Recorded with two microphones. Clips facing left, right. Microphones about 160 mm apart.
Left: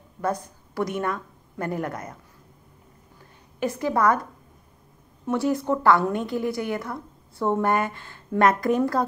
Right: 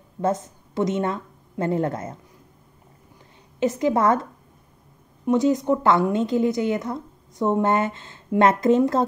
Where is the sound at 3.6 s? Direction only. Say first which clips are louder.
Right 3 dB; 20° right (ahead or behind).